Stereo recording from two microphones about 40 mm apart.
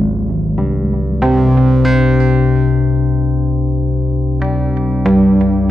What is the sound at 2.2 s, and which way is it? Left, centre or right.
Music, centre.